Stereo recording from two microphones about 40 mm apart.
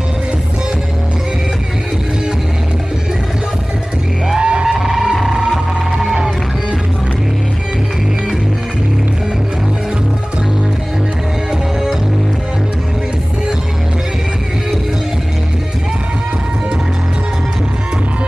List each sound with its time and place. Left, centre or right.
4.4 s music: right
4.6 s music: centre